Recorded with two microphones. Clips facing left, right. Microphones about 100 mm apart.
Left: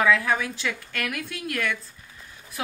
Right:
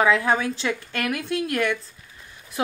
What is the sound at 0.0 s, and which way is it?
Speech, 25° right (ahead or behind).